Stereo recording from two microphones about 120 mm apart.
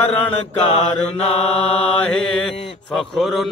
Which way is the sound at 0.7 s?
65° left (ahead or behind).